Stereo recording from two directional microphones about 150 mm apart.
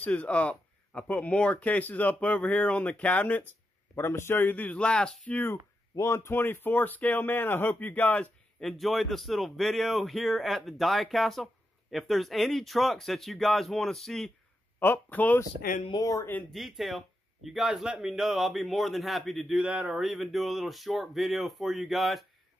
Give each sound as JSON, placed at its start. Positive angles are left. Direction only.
{"t": 0.0, "sound": "speech", "side_deg": 10}
{"t": 15.9, "sound": "speech", "side_deg": 20}
{"t": 16.5, "sound": "speech", "side_deg": 0}